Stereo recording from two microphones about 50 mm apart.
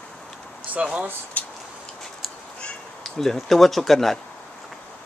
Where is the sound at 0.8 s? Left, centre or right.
Right.